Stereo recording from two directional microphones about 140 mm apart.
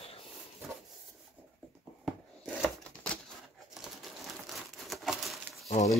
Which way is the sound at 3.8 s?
Centre (ahead or behind).